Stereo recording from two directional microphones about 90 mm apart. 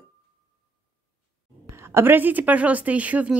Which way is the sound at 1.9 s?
25° right (ahead or behind).